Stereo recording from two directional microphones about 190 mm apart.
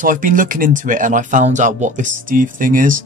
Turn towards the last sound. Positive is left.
turn(degrees=-45)  # may be behind; listen again after turning